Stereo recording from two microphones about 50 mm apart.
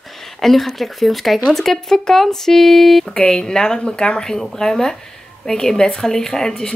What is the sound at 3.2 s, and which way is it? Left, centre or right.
Speech, centre.